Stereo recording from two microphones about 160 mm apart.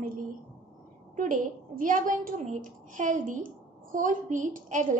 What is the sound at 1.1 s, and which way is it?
A woman's voice, 55° right (ahead or behind).